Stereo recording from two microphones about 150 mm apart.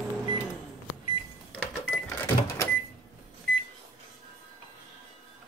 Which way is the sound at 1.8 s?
15° left (ahead or behind).